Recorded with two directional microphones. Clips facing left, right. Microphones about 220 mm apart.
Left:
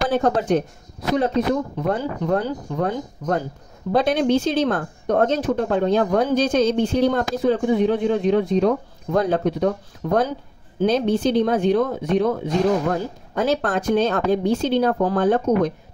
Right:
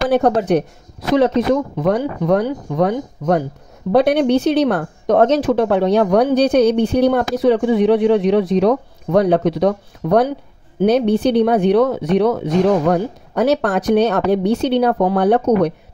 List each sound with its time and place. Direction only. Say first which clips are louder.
0.1 s speech: right 5 dB; 65° right (ahead or behind)
1.1 s speech: right 6 dB; 85° right; by 15.7 s 70° right (ahead or behind)